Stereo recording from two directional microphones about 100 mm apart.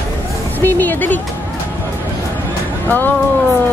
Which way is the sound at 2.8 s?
20° left (ahead or behind).